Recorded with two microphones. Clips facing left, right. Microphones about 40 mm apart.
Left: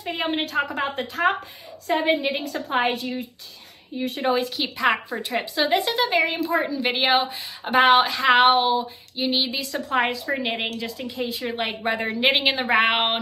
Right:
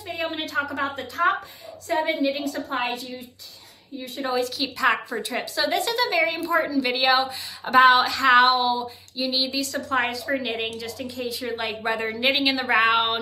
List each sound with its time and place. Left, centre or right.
0.0 s a woman's voice: left